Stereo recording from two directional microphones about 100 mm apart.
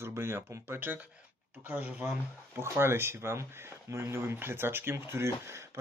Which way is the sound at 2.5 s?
25° right (ahead or behind).